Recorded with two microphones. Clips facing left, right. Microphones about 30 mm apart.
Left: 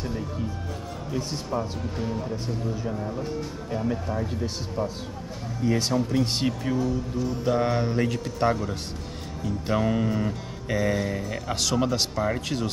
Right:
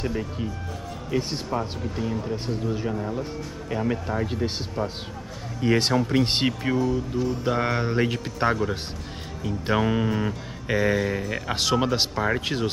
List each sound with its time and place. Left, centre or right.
0.0 s speech: right
5.6 s speech: right
6.8 s speech: centre
7.4 s speech: centre